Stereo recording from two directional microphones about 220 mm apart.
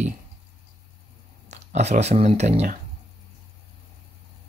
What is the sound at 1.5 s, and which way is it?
Speech, 30° right (ahead or behind).